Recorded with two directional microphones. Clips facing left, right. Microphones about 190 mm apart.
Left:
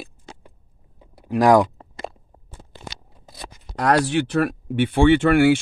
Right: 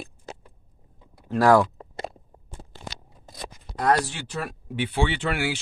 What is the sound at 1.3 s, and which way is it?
Speech, 15° left (ahead or behind).